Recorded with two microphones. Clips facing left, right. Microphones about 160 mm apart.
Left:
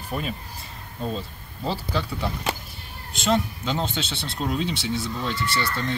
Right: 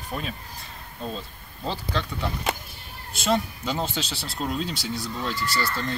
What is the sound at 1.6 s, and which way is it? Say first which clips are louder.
Speech: left 2 dB; 5° left (ahead or behind).